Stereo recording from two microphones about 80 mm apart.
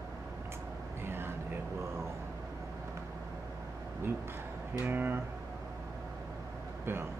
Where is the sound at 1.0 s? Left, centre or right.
Right.